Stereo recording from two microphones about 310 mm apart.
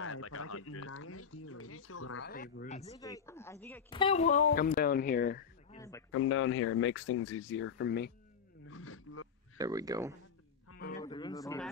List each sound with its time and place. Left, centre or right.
0.0 s speech: left
2.2 s speech: left
5.8 s a man's voice: centre
6.1 s speech: left
9.6 s speech: centre
11.0 s a man's voice: centre